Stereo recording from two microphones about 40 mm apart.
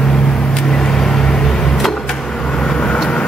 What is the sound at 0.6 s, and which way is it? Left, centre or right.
Vehicle, centre.